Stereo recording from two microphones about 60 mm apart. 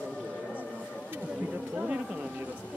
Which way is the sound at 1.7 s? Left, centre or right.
Centre.